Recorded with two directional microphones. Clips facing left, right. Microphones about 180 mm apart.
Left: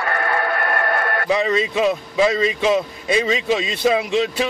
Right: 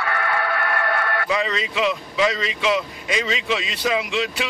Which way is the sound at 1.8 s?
35° left (ahead or behind).